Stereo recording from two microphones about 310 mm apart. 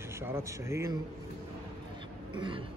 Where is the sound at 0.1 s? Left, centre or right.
Centre.